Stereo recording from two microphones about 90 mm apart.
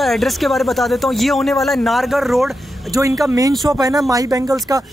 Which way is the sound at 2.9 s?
35° right (ahead or behind).